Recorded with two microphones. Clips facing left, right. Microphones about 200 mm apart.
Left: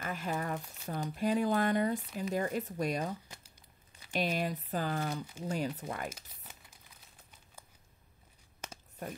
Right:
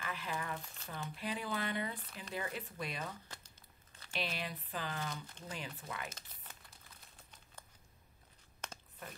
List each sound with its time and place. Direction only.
0.0 s a sound: 45° left (ahead or behind)
0.8 s speech: 45° left (ahead or behind)
4.1 s speech: 45° left (ahead or behind)
5.1 s speech: 10° left (ahead or behind)
5.5 s speech: 45° left (ahead or behind)
6.0 s speech: 10° left (ahead or behind)
8.6 s a sound: 10° left (ahead or behind)